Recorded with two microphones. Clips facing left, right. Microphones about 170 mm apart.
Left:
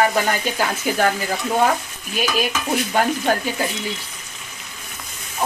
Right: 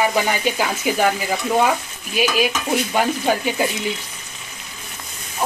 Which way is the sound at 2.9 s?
10° right (ahead or behind).